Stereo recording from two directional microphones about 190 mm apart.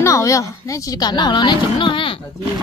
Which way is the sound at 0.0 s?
15° left (ahead or behind).